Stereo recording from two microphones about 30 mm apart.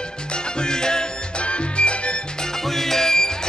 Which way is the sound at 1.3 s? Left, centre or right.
Left.